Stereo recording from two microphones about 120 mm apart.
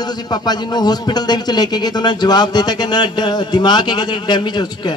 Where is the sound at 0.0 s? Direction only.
35° left (ahead or behind).